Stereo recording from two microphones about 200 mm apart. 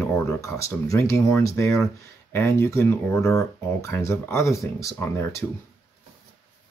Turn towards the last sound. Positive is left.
turn(degrees=10)  # may be behind; listen again after turning